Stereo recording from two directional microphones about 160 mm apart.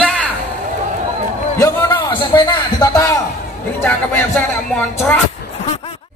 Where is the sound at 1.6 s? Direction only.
15° left (ahead or behind).